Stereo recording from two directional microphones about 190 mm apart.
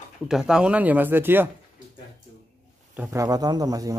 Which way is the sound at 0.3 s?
5° right (ahead or behind).